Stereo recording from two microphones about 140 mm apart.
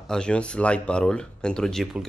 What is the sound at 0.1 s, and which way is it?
Speech, 5° left (ahead or behind).